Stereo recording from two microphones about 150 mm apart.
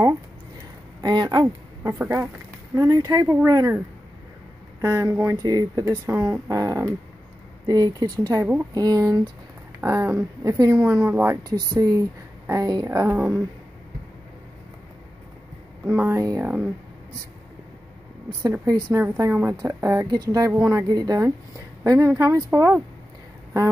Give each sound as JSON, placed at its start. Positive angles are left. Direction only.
{"t": 1.0, "sound": "speech", "side_deg": -30}
{"t": 1.8, "sound": "a woman's voice", "side_deg": -15}
{"t": 4.8, "sound": "a woman's voice", "side_deg": -20}
{"t": 11.4, "sound": "a woman's voice", "side_deg": -25}
{"t": 15.9, "sound": "speech", "side_deg": -15}
{"t": 18.9, "sound": "a woman's voice", "side_deg": -15}